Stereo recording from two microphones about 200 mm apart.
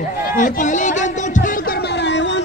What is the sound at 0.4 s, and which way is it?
Speech, 40° left (ahead or behind).